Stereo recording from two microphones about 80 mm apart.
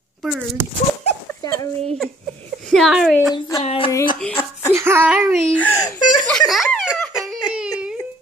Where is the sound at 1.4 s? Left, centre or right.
Left.